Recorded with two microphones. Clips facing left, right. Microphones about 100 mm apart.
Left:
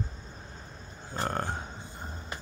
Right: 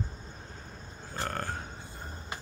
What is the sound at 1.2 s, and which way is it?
Speech, 20° left (ahead or behind).